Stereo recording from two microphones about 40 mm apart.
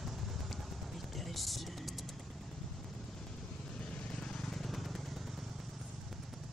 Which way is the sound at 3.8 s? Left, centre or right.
Left.